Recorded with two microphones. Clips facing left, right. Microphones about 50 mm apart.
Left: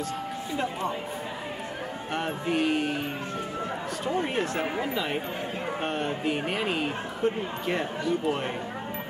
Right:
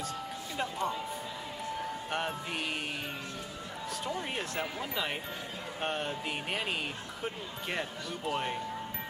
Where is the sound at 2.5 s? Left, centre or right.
Centre.